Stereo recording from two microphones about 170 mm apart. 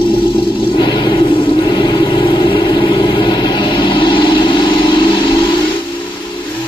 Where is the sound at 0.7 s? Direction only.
25° left (ahead or behind).